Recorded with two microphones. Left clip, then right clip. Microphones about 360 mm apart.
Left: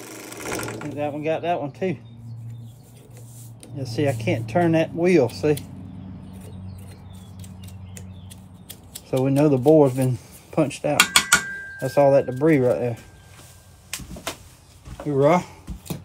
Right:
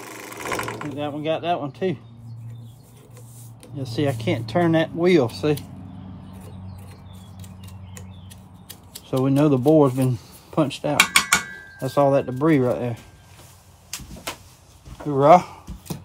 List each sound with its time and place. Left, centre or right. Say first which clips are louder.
0.0 s ratchet: right 2 dB; centre
1.2 s speech: right 1 dB; centre
3.9 s speech: left 1 dB; centre
6.4 s vehicle: even; centre
9.1 s speech: even; centre
11.0 s dishes: even; centre
11.8 s speech: left 2 dB; centre
15.0 s speech: right 5 dB; centre